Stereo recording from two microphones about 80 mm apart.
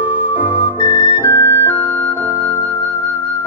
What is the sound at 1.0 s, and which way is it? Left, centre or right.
Flute, left.